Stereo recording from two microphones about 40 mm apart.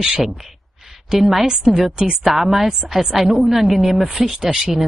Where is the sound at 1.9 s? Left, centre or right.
Right.